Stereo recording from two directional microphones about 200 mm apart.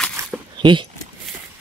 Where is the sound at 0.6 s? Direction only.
25° right (ahead or behind).